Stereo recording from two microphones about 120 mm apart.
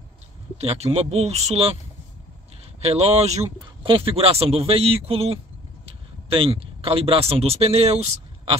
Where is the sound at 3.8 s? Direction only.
45° right (ahead or behind).